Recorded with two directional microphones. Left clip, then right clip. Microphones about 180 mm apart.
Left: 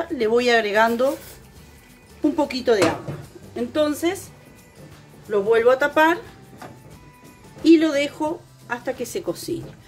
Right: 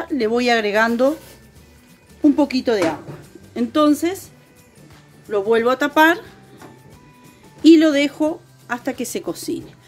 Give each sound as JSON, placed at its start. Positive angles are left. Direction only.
{"t": 0.0, "sound": "speech", "side_deg": -45}
{"t": 2.3, "sound": "speech", "side_deg": -40}
{"t": 3.5, "sound": "speech", "side_deg": -60}
{"t": 5.3, "sound": "speech", "side_deg": -55}
{"t": 7.6, "sound": "speech", "side_deg": -60}